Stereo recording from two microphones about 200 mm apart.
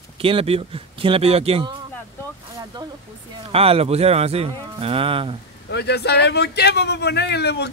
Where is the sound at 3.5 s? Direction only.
30° right (ahead or behind).